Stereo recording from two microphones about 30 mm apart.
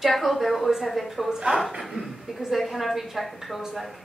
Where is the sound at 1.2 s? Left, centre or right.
Right.